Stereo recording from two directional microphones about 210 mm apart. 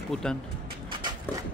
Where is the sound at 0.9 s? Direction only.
20° right (ahead or behind).